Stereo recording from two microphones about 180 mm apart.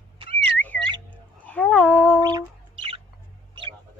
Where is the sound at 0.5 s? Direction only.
10° left (ahead or behind).